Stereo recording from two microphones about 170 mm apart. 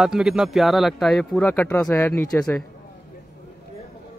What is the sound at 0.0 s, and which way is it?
A man's voice, 5° right (ahead or behind).